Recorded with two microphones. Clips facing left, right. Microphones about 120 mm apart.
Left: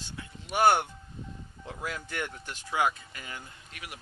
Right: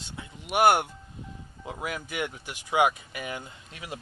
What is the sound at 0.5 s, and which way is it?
Speech, 10° right (ahead or behind).